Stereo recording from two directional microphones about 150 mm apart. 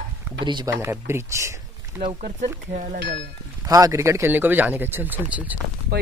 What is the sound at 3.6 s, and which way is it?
Speech, 25° right (ahead or behind).